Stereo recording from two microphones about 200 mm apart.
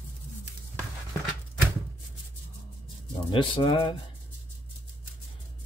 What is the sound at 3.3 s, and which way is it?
Speech, 25° left (ahead or behind).